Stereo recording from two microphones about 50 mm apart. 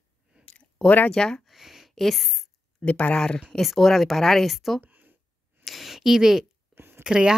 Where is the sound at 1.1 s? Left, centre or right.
Centre.